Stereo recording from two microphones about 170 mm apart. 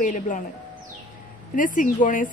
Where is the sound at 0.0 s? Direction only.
50° left (ahead or behind).